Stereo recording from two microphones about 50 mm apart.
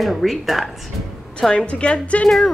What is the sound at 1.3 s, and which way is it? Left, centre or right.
Speech, centre.